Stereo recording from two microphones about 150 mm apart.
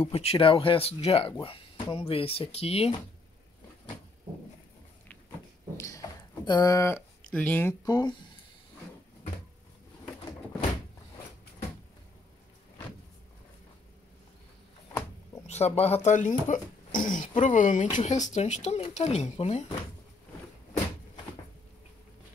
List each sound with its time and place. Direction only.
0.0 s speech: 45° left (ahead or behind)
5.8 s a sound: 20° left (ahead or behind)
7.2 s speech: 10° left (ahead or behind)
7.9 s speech: 25° left (ahead or behind)
15.4 s speech: 45° left (ahead or behind)